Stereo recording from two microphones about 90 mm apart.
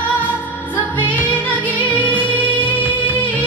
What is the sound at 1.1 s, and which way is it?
Music, 15° left (ahead or behind).